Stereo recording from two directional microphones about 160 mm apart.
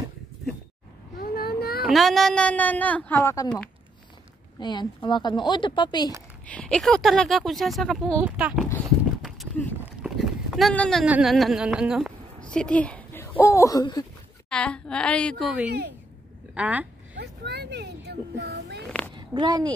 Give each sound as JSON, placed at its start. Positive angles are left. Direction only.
{"t": 1.2, "sound": "a sound", "side_deg": 70}
{"t": 1.9, "sound": "a woman's voice", "side_deg": 0}
{"t": 4.6, "sound": "a woman's voice", "side_deg": 25}
{"t": 6.4, "sound": "speech", "side_deg": 5}
{"t": 8.2, "sound": "speech", "side_deg": -10}
{"t": 9.8, "sound": "clip-clop", "side_deg": -5}
{"t": 11.1, "sound": "a woman's voice", "side_deg": -5}
{"t": 14.5, "sound": "speech", "side_deg": 5}
{"t": 17.2, "sound": "a sound", "side_deg": -90}
{"t": 19.1, "sound": "a child's voice", "side_deg": -30}